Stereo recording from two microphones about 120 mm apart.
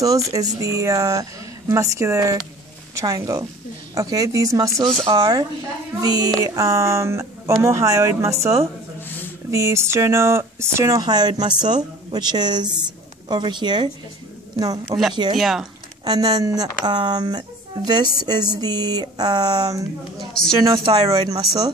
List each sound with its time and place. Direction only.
0.0 s speech: 30° right (ahead or behind)
15.3 s speech: centre (ahead or behind)
16.0 s speech: 35° right (ahead or behind)
20.7 s speech: 45° right (ahead or behind)